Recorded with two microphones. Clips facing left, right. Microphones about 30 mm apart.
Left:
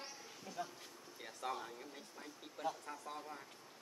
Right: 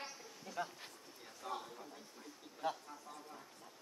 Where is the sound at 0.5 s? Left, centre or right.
Right.